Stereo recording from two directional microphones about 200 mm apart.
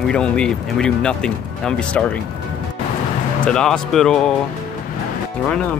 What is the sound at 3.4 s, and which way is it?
Speech, 5° left (ahead or behind).